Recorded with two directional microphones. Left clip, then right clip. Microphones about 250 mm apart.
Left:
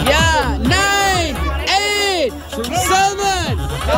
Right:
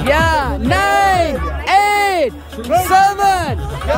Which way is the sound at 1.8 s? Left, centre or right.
Centre.